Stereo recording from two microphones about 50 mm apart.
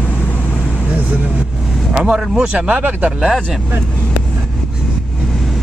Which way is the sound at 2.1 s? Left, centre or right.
Centre.